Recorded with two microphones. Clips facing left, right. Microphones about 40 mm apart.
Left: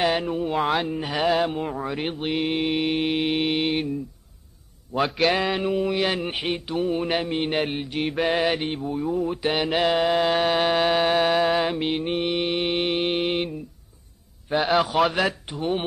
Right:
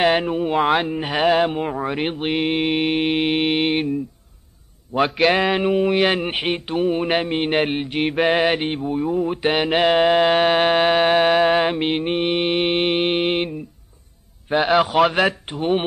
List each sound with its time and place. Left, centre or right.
0.0 s mantra: right
4.9 s a man's voice: right
5.7 s mantra: right